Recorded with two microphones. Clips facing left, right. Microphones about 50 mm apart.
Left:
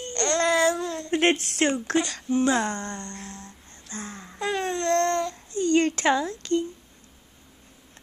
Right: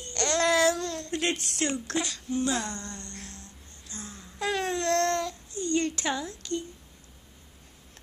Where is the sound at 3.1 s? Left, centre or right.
Centre.